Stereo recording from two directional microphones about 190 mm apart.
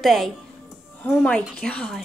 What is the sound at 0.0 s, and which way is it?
Speech, centre (ahead or behind).